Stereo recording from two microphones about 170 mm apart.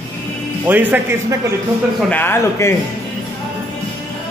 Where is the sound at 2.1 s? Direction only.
15° left (ahead or behind).